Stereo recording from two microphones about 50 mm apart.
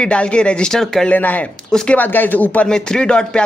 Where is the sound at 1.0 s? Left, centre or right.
Left.